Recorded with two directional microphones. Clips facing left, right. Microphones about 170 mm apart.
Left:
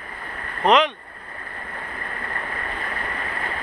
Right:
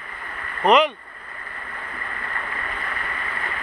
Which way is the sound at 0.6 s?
5° right (ahead or behind).